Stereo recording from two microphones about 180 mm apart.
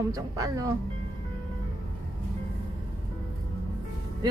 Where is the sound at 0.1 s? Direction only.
20° right (ahead or behind).